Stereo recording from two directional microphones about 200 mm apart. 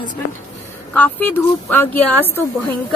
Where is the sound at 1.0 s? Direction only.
10° left (ahead or behind).